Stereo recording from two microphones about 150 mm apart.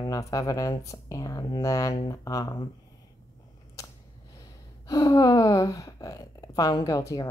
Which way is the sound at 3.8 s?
20° left (ahead or behind).